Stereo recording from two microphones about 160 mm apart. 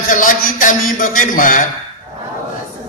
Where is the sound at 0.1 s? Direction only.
55° left (ahead or behind).